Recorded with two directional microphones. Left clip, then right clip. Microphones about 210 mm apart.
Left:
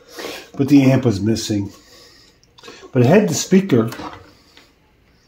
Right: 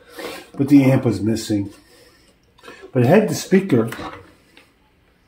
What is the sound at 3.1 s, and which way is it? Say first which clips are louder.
Speech: even; 30° left (ahead or behind).